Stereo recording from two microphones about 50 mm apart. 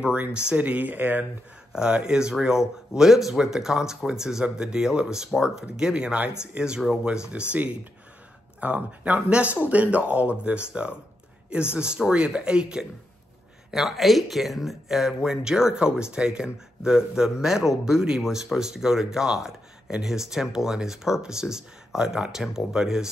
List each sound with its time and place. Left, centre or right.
0.0 s speech: right
1.7 s speech: centre
13.7 s speech: centre